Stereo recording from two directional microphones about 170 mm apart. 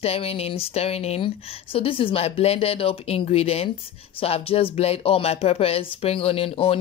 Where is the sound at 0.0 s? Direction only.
35° left (ahead or behind).